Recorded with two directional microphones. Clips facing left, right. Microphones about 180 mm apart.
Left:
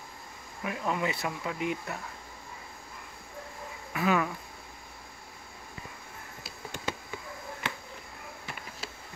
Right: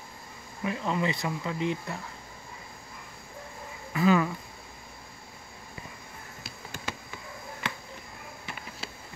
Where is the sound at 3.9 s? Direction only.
5° left (ahead or behind).